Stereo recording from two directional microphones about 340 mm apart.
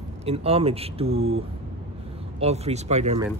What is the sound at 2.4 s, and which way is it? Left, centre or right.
Speech, centre.